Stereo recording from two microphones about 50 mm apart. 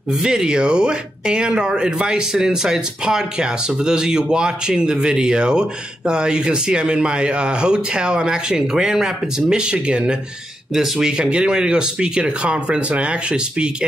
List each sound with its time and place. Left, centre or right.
0.2 s speech: centre